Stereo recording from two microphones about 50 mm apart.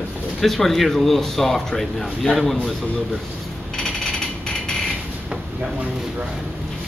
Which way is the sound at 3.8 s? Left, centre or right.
Centre.